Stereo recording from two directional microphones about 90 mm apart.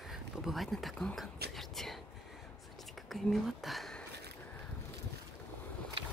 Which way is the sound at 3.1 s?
Centre (ahead or behind).